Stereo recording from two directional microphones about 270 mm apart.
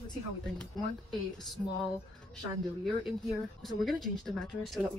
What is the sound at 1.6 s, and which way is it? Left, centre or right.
Speech, centre.